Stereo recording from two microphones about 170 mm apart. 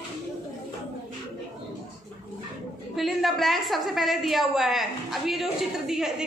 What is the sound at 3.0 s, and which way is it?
A woman's voice, centre (ahead or behind).